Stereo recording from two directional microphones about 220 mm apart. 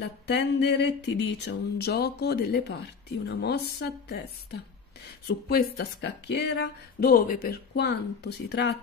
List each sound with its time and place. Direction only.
0.3 s speech: 50° left (ahead or behind)